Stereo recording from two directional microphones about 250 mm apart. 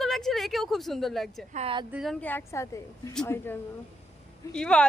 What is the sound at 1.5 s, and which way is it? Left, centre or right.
Speech, right.